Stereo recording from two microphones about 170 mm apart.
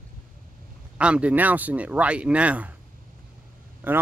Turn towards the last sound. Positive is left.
turn(degrees=-10)  # may be behind; listen again after turning